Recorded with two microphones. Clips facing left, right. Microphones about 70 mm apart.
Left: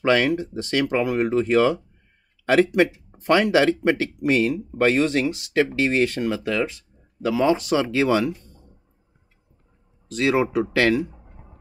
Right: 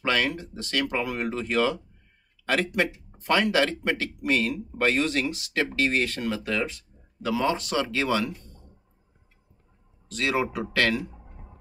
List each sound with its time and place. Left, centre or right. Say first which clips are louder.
0.1 s speech: left 7 dB; centre
10.1 s speech: left 6 dB; centre